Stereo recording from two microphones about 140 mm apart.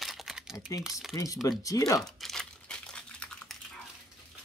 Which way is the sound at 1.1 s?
25° left (ahead or behind).